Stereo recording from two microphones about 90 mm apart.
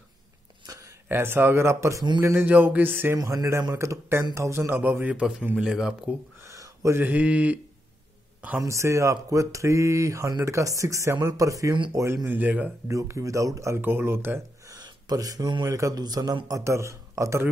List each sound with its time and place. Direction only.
0.7 s a sound: 40° right (ahead or behind)
1.0 s a man's voice: 25° right (ahead or behind)
2.2 s a man's voice: 20° right (ahead or behind)
3.2 s a man's voice: 40° right (ahead or behind); by 6.1 s 10° right (ahead or behind)
6.4 s a sound: 35° right (ahead or behind)
7.0 s speech: 15° right (ahead or behind)
8.5 s speech: 35° right (ahead or behind)
12.3 s a man's voice: 20° right (ahead or behind)
12.8 s speech: 35° right (ahead or behind)
13.7 s a man's voice: 25° right (ahead or behind)
14.7 s a sound: 40° right (ahead or behind)
15.6 s speech: 35° right (ahead or behind)
16.4 s speech: 35° right (ahead or behind)